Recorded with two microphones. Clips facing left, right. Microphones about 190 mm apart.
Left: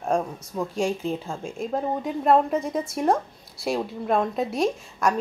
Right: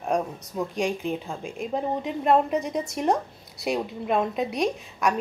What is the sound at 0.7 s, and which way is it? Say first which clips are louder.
Speech: left 2 dB; 15° right (ahead or behind).